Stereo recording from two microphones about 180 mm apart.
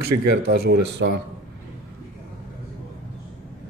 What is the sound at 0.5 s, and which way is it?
Speech, 70° right (ahead or behind).